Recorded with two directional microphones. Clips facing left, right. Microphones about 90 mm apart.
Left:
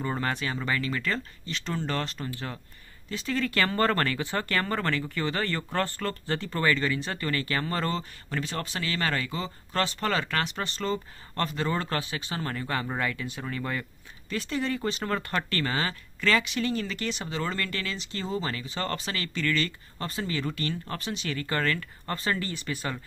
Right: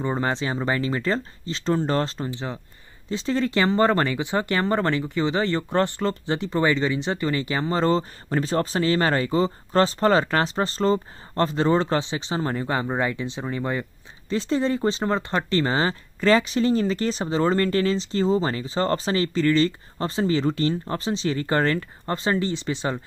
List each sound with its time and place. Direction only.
0.0 s speech: 25° right (ahead or behind)